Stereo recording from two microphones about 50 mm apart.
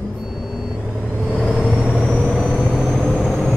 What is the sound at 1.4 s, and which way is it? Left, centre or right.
Vehicle, centre.